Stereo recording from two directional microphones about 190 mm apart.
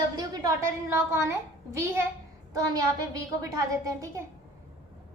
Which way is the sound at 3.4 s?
20° right (ahead or behind).